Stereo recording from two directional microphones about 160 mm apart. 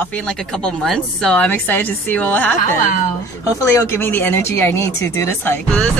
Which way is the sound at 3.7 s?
15° left (ahead or behind).